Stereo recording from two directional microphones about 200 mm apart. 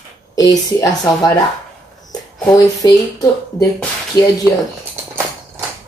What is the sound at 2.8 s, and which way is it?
Speech, 20° left (ahead or behind).